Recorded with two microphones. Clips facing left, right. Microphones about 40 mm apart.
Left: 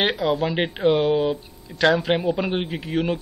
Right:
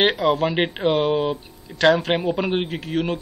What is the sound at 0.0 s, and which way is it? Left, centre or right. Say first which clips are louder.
A man's voice: right 3 dB; centre.